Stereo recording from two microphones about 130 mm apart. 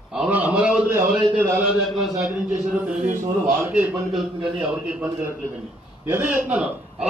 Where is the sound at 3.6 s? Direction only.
15° right (ahead or behind).